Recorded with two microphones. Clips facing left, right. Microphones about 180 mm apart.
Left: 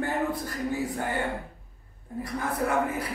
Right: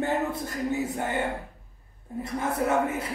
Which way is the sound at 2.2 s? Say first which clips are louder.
Right 2 dB; 25° right (ahead or behind).